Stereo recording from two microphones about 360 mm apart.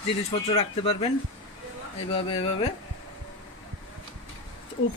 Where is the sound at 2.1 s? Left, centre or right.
Centre.